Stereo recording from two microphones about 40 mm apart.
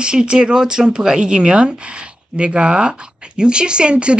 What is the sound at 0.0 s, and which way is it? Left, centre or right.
Speech, right.